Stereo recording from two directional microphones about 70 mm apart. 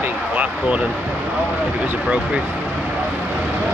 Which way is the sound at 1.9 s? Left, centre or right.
Centre.